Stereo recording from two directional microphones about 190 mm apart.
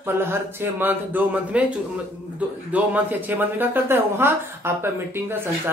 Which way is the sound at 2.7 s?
10° right (ahead or behind).